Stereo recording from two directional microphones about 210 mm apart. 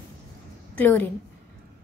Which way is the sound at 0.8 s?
10° left (ahead or behind).